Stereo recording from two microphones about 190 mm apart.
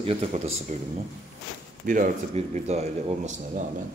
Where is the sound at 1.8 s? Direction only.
45° right (ahead or behind).